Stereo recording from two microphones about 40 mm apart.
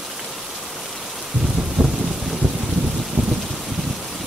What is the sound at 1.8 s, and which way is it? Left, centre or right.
Thunder, right.